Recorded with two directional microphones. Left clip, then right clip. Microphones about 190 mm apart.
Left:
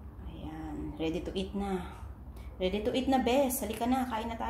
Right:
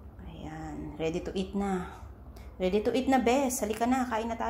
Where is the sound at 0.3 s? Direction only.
15° right (ahead or behind).